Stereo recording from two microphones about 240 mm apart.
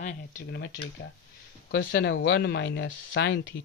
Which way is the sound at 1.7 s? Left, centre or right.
Left.